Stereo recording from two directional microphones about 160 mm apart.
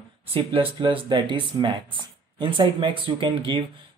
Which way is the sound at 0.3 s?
35° right (ahead or behind).